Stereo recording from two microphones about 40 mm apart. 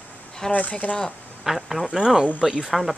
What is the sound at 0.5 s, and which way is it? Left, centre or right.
Speech, left.